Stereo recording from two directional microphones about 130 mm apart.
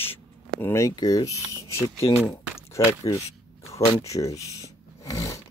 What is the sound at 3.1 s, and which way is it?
Speech, 50° left (ahead or behind).